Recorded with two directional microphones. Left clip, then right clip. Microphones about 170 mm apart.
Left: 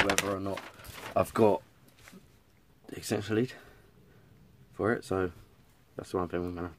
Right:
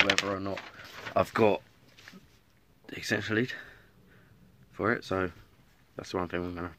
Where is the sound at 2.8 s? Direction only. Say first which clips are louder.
Right 3 dB; 5° left (ahead or behind).